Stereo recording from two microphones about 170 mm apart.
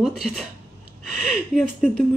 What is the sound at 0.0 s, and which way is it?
A woman's voice, centre (ahead or behind).